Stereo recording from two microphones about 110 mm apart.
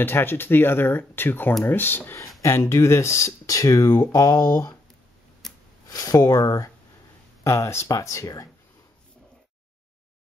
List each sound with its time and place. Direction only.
0.0 s speech: 20° left (ahead or behind)
5.9 s speech: 35° left (ahead or behind)